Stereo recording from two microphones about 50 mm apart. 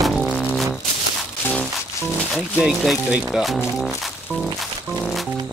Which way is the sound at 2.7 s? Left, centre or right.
Centre.